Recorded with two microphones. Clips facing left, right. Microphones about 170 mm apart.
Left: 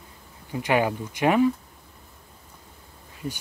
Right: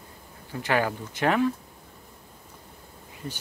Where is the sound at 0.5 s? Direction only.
15° left (ahead or behind).